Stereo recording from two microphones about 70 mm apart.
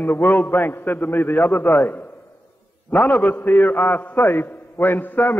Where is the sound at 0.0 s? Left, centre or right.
Left.